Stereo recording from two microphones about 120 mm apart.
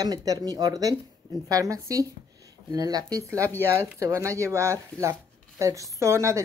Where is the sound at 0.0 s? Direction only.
30° right (ahead or behind).